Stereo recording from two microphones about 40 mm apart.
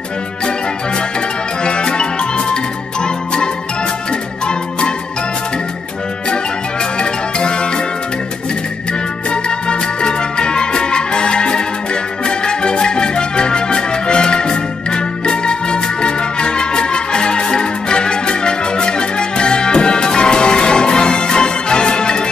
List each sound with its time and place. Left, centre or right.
1.6 s music: left
4.5 s music: left
7.0 s music: left
9.3 s music: left